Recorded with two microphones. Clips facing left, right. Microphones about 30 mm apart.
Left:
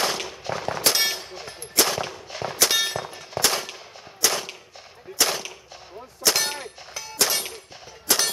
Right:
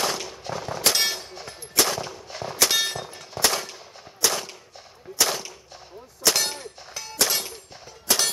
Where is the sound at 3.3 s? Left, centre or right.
Centre.